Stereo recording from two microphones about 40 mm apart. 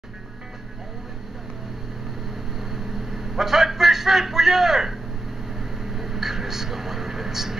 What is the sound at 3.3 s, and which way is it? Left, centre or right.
A man's voice, centre.